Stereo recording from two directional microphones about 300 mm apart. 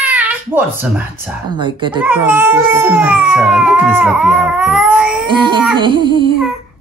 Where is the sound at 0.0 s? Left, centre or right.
Centre.